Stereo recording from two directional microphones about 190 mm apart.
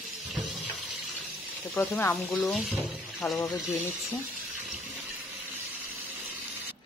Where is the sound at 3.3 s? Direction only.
20° left (ahead or behind).